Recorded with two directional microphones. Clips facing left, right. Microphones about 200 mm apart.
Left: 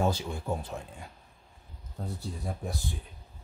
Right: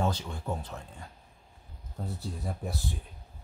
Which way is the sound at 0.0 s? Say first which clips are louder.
Left 2 dB; 10° left (ahead or behind).